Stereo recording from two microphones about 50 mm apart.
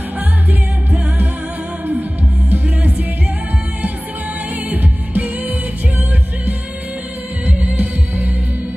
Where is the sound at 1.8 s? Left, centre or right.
Right.